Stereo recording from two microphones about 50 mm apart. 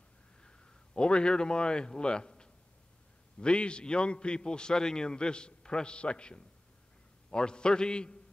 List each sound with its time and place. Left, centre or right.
0.4 s a man's voice: centre